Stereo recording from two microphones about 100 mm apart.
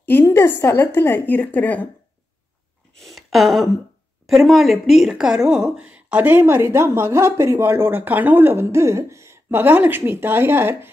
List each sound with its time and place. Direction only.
0.0 s a woman's voice: 20° left (ahead or behind)
3.0 s a sound: centre (ahead or behind)
4.3 s a woman's voice: centre (ahead or behind); by 10.9 s 25° right (ahead or behind)